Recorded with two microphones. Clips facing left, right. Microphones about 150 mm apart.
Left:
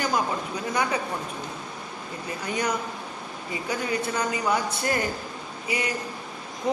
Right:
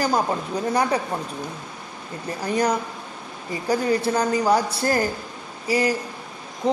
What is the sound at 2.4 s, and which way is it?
A woman's voice, 35° right (ahead or behind).